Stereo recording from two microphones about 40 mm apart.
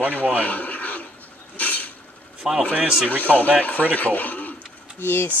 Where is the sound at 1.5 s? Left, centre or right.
Left.